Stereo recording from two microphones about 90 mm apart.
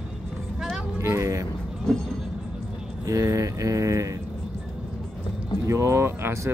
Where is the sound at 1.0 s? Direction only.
35° right (ahead or behind).